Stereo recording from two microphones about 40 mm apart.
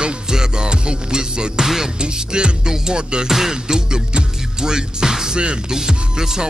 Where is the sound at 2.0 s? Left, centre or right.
Right.